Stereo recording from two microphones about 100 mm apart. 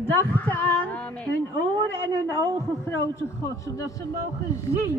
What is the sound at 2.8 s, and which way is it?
A man's voice, 30° left (ahead or behind).